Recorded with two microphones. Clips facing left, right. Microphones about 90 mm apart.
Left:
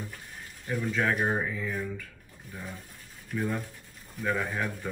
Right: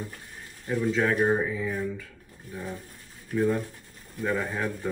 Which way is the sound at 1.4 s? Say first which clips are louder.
Right 4 dB; 10° right (ahead or behind).